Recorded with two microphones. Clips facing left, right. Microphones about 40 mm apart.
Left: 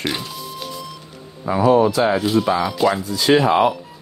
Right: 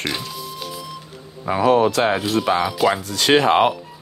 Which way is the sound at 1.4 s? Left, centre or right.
Right.